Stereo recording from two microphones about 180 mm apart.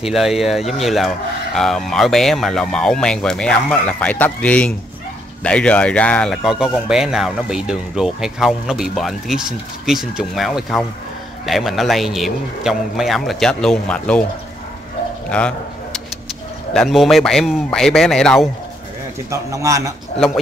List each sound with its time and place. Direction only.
0.0 s speech: centre (ahead or behind)
15.2 s bow-wow: 5° left (ahead or behind)
16.7 s speech: centre (ahead or behind)
19.3 s a man's voice: 20° right (ahead or behind)